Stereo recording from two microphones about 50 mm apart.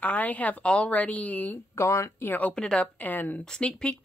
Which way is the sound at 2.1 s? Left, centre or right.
Left.